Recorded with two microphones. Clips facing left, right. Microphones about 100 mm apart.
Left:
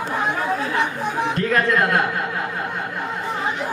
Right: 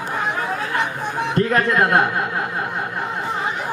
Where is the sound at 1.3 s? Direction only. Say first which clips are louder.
Right 3 dB; 30° right (ahead or behind).